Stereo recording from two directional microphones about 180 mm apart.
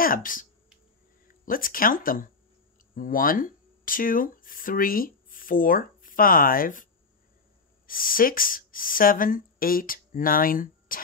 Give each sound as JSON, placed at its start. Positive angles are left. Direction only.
{"t": 0.0, "sound": "speech", "side_deg": 50}